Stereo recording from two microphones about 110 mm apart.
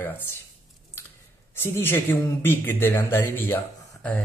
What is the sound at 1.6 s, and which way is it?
Speech, 20° left (ahead or behind).